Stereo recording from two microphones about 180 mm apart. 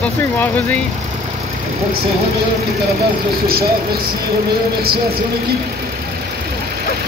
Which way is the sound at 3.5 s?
55° right (ahead or behind).